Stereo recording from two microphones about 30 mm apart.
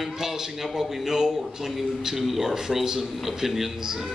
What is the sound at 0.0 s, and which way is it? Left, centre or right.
A man's voice, centre.